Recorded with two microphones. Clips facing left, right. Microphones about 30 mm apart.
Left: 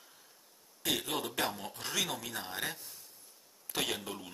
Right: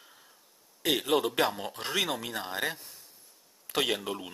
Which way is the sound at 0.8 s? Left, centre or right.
Right.